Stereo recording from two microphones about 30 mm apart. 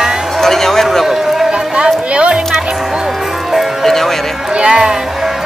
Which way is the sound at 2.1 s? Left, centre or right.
Right.